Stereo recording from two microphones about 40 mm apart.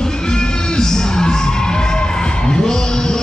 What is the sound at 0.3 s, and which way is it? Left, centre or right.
Music, centre.